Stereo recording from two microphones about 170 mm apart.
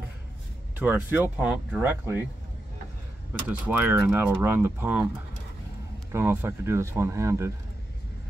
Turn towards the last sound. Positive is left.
turn(degrees=-15)  # may be behind; listen again after turning